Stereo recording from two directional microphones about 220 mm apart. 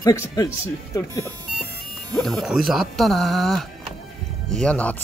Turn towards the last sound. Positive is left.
turn(degrees=5)  # may be behind; listen again after turning